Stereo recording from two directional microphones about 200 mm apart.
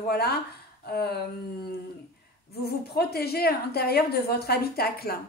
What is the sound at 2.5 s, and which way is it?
A woman's voice, 50° left (ahead or behind).